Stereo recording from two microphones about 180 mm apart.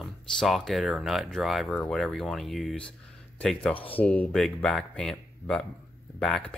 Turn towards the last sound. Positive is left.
turn(degrees=5)  # may be behind; listen again after turning